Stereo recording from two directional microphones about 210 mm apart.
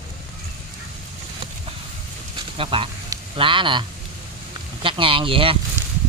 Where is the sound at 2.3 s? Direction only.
25° right (ahead or behind).